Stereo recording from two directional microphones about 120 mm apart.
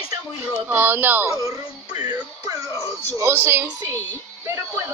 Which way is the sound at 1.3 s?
30° right (ahead or behind).